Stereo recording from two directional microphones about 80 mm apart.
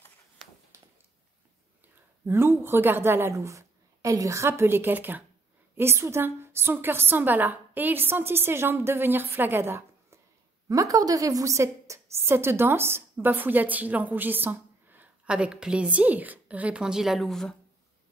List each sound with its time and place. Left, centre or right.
2.2 s a woman's voice: right
3.3 s a woman's voice: right
10.7 s a woman's voice: right
15.2 s a woman's voice: centre